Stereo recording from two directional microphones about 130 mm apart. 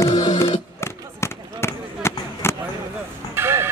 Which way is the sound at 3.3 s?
20° right (ahead or behind).